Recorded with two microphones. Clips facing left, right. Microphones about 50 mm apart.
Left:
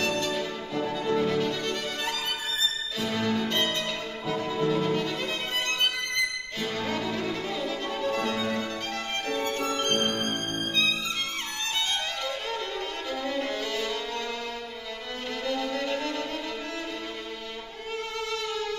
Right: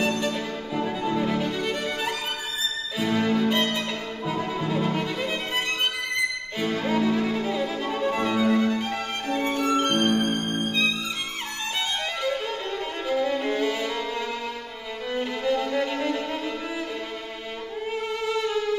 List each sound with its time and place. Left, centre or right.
0.3 s music: centre
6.6 s violin: centre
13.1 s violin: centre
15.1 s violin: centre
17.9 s violin: centre